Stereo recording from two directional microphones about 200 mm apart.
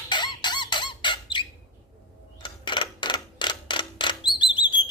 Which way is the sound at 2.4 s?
25° left (ahead or behind).